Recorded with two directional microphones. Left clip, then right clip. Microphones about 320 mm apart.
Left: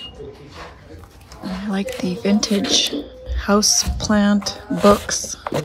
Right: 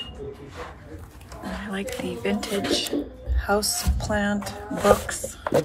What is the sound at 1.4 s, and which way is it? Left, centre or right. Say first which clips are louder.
Speech: left 5 dB; centre.